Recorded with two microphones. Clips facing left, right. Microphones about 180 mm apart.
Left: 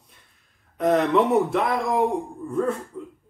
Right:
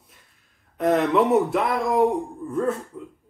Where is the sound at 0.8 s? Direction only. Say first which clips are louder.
Even; centre (ahead or behind).